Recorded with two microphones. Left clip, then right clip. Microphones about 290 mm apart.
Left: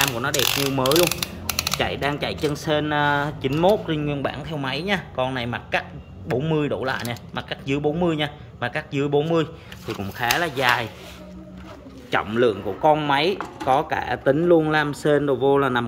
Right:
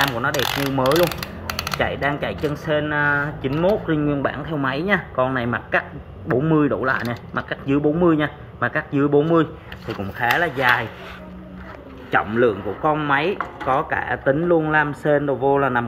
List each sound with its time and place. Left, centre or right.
0.0 s mechanisms: centre
1.8 s speech: centre
12.1 s speech: centre